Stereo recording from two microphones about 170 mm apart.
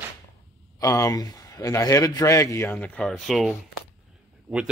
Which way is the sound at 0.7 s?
20° left (ahead or behind).